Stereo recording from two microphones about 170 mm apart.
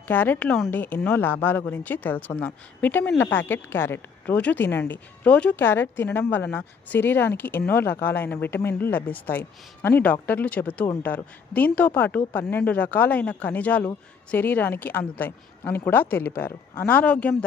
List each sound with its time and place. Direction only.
0.1 s a woman's voice: 10° left (ahead or behind)